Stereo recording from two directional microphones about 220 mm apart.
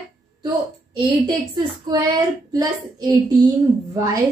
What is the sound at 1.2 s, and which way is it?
Speech, 20° right (ahead or behind).